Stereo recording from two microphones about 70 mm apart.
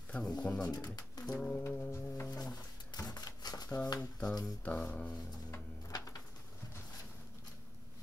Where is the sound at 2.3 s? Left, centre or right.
Left.